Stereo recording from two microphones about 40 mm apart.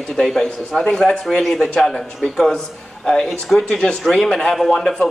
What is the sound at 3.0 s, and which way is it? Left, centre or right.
Speech, centre.